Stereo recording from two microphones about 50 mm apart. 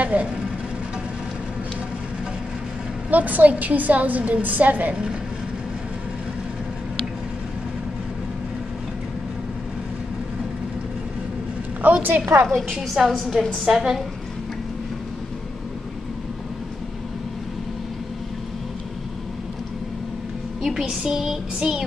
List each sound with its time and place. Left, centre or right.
0.0 s speech: right
3.1 s a woman's voice: right
11.8 s a woman's voice: right
12.4 s a woman's voice: centre
12.7 s a woman's voice: centre
13.2 s a woman's voice: centre
13.7 s a woman's voice: centre
20.6 s speech: centre